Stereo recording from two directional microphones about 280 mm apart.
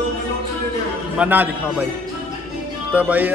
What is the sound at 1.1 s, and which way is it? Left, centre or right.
Speech, centre.